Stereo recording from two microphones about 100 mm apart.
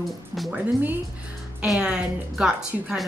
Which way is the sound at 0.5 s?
20° right (ahead or behind).